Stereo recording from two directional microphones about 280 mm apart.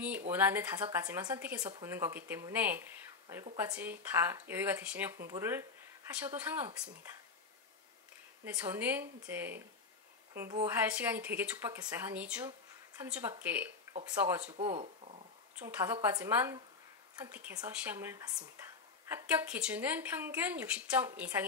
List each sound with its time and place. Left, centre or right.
0.3 s a woman's voice: centre
8.5 s a woman's voice: centre
14.4 s speech: right
15.7 s a woman's voice: centre